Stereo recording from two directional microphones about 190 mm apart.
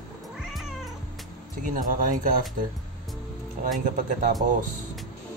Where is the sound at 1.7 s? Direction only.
45° right (ahead or behind).